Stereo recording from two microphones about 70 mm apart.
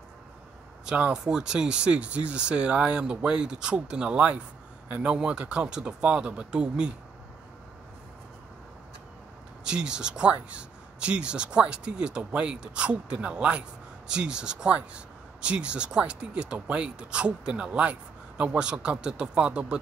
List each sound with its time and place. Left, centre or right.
0.8 s speech: centre
9.7 s speech: centre